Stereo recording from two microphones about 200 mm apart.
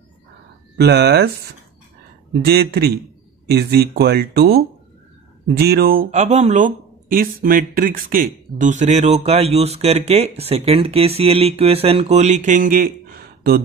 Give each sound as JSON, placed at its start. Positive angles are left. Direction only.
{"t": 0.7, "sound": "speech", "side_deg": -55}
{"t": 2.4, "sound": "speech", "side_deg": -55}
{"t": 6.0, "sound": "speech", "side_deg": -35}